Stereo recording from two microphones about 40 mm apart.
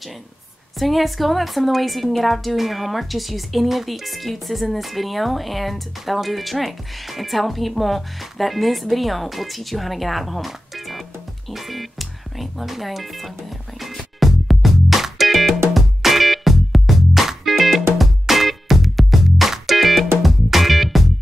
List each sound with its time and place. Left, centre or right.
0.7 s a woman's voice: centre
11.5 s music: centre